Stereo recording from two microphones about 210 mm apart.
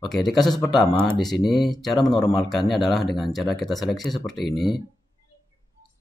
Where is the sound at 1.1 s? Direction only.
20° left (ahead or behind).